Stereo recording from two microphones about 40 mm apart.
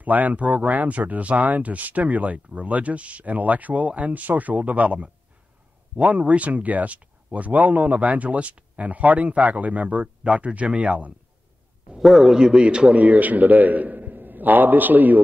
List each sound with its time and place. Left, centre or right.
0.0 s speech: right
12.0 s a man's voice: centre
12.4 s a man's voice: centre
12.9 s a man's voice: right